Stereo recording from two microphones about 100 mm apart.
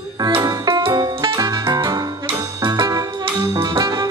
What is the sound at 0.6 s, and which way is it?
Music, 60° right (ahead or behind).